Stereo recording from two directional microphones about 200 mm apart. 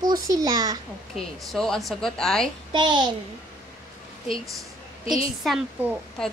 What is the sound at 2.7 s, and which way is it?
Speech, 25° right (ahead or behind).